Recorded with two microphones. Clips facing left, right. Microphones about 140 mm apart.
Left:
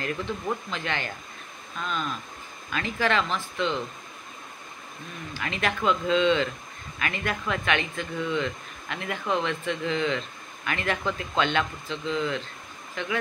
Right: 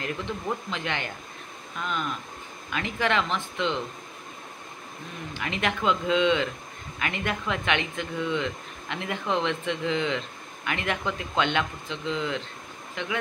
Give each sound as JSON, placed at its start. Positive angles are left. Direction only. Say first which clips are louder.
{"t": 0.7, "sound": "speech", "louder": "even", "side_deg": -20}
{"t": 5.3, "sound": "speech", "louder": "even", "side_deg": -20}